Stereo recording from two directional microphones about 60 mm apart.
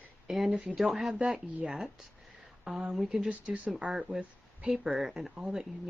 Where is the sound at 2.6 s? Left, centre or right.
Centre.